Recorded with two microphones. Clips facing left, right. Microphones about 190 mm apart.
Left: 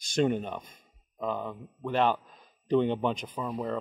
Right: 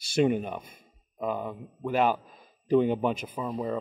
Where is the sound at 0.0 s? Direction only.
5° right (ahead or behind).